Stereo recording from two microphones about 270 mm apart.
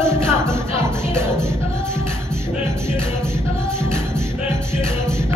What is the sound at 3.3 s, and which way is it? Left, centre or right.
Music, centre.